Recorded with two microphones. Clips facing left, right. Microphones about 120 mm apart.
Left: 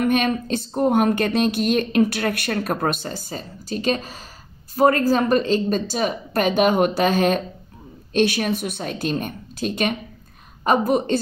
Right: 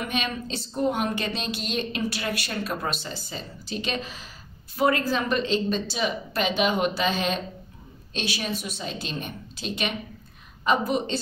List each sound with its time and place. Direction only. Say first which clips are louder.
0.0 s a woman's voice: left 10 dB; 50° left (ahead or behind)